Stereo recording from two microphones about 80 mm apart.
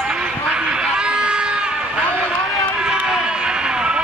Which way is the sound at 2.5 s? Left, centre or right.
Centre.